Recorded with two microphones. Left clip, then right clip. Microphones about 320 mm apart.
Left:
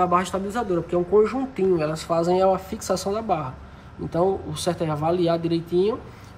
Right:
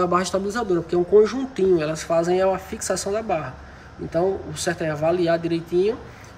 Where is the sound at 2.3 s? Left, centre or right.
Centre.